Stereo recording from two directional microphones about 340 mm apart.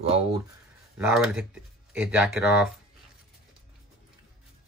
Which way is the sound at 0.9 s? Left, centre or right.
Centre.